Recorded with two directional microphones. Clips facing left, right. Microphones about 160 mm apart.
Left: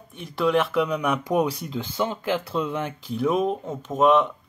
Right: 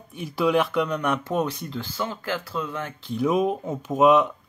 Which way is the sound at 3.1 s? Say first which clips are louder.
Right 1 dB; centre (ahead or behind).